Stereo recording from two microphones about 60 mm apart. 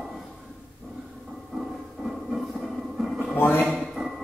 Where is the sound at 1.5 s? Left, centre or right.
Centre.